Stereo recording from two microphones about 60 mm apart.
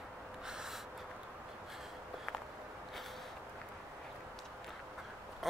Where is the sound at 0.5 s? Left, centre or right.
Centre.